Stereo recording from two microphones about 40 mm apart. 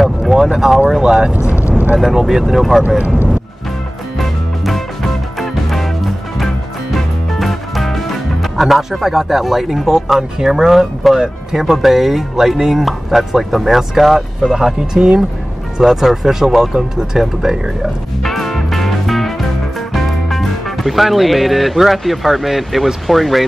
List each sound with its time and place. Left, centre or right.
0.3 s speech: centre
1.0 s speech: right
1.7 s vehicle: right
2.1 s speech: centre
4.2 s music: centre
12.8 s speech: centre
15.8 s speech: centre
18.2 s music: centre
19.9 s speech: centre